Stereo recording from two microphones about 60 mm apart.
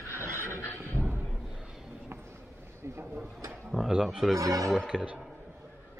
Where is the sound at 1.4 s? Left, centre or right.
Centre.